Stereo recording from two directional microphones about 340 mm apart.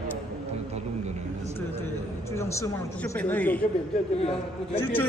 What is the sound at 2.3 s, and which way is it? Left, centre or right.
Speech, centre.